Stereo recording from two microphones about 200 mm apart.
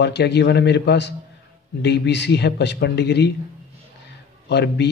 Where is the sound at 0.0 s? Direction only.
60° left (ahead or behind).